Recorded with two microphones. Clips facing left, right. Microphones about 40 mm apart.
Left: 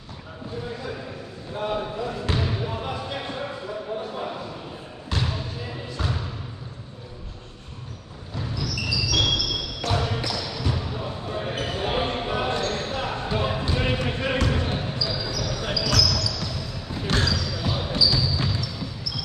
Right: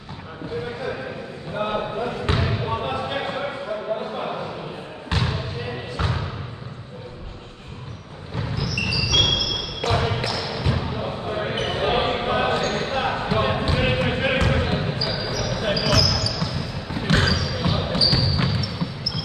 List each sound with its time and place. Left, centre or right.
1.6 s speech: right
5.1 s basketball bounce: right
8.5 s basketball bounce: right